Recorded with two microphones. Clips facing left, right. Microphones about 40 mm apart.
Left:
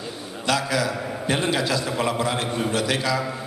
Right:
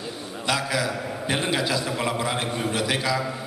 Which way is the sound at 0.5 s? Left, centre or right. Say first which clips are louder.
Left 2 dB; centre.